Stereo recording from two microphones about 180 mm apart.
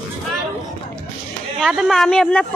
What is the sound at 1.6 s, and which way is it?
Speech, centre (ahead or behind).